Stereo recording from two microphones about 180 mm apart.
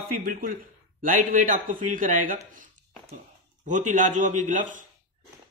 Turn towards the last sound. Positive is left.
turn(degrees=-45)  # may be behind; listen again after turning